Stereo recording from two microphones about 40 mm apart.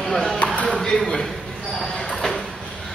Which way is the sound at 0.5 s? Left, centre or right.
Left.